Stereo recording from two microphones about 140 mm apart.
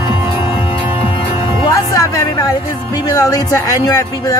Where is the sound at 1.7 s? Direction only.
25° left (ahead or behind).